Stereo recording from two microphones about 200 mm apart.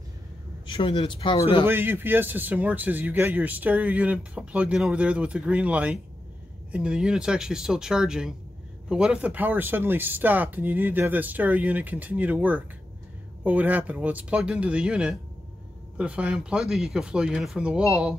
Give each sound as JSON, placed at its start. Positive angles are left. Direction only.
{"t": 0.7, "sound": "speech", "side_deg": 25}
{"t": 1.7, "sound": "speech", "side_deg": -10}